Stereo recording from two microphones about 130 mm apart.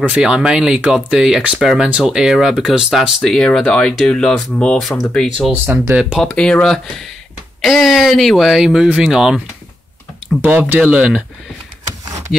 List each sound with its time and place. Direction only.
0.1 s speech: 5° right (ahead or behind)
5.5 s speech: 15° right (ahead or behind)
6.2 s speech: 5° left (ahead or behind)
10.4 s speech: 10° right (ahead or behind)